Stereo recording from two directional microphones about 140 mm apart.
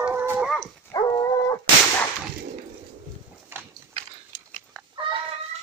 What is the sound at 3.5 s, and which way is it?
Biting, 15° right (ahead or behind).